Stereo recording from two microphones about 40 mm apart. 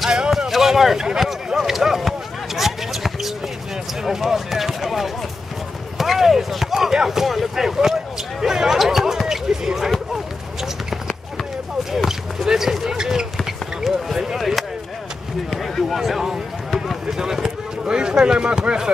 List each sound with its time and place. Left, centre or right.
0.0 s a sound: centre
1.6 s basketball bounce: centre
4.0 s speech: centre
10.1 s a sound: centre
11.9 s speech: centre
13.8 s speech: centre
15.9 s speech: centre
16.7 s run: centre
17.2 s speech: centre